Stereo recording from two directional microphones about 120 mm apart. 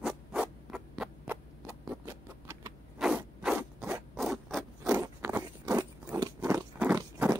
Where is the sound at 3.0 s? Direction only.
5° right (ahead or behind).